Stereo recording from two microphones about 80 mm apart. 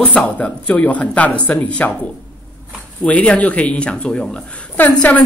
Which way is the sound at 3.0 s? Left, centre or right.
Centre.